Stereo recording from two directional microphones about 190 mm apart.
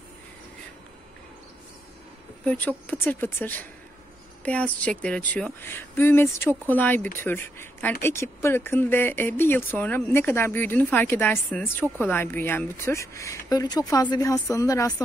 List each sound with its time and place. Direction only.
2.4 s speech: 10° left (ahead or behind)